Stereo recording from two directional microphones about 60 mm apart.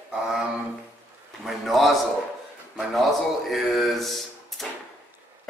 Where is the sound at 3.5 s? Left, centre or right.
Centre.